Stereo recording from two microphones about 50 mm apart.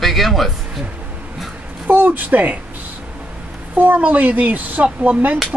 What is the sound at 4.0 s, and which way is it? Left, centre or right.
Speech, right.